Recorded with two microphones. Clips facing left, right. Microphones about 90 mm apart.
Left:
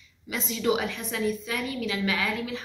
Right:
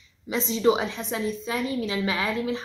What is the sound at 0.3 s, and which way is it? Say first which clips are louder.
A woman's voice: right 4 dB; 25° right (ahead or behind).